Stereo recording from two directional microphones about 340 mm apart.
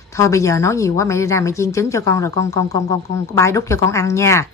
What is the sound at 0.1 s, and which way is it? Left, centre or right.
A child's voice, centre.